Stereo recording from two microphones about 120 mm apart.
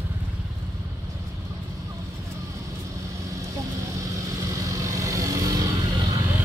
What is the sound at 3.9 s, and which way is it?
Vehicle, 25° right (ahead or behind).